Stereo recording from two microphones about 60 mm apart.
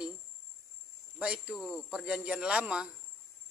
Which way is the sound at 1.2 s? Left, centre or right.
Right.